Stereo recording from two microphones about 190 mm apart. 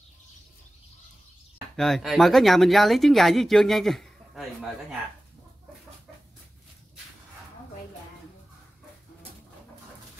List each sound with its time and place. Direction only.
1.8 s speech: centre (ahead or behind)